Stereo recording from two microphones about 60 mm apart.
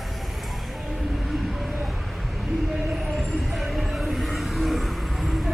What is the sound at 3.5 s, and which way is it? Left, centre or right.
Vehicle, centre.